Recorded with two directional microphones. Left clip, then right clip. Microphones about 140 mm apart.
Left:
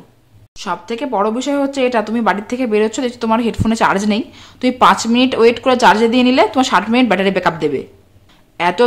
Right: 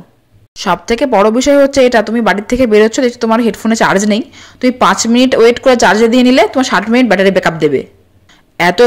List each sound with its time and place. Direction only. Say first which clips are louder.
0.6 s speech: right 9 dB; 45° right (ahead or behind)